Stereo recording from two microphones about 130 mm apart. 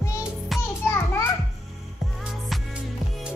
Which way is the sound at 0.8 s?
20° left (ahead or behind).